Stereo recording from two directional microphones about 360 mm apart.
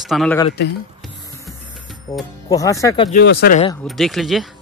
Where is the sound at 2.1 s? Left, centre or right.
Centre.